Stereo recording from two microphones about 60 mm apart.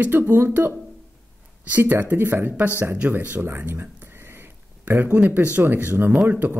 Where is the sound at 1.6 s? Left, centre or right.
Right.